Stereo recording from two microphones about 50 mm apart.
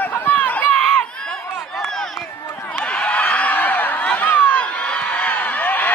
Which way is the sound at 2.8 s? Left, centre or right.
Left.